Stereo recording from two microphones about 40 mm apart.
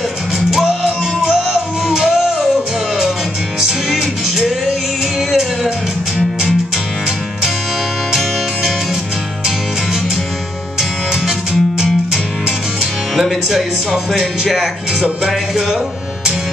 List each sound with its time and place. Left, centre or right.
0.8 s music: centre
3.6 s music: centre
10.8 s music: centre
13.1 s speech: centre
15.2 s music: centre